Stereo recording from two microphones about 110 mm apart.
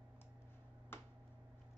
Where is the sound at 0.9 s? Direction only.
20° left (ahead or behind).